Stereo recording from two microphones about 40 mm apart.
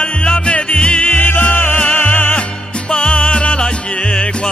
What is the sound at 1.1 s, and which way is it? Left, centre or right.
Music, left.